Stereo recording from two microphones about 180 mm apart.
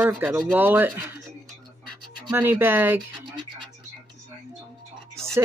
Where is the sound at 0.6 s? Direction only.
10° right (ahead or behind).